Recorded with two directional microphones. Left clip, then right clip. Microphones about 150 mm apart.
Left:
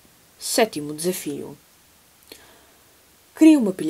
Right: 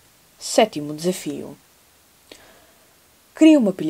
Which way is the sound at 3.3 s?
35° right (ahead or behind).